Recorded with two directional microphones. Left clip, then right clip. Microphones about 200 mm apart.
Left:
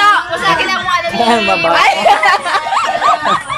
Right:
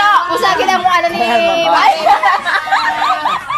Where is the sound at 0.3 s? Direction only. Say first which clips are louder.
Right 1 dB; 30° right (ahead or behind).